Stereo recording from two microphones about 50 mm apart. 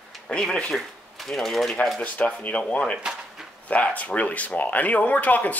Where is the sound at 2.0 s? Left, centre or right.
Left.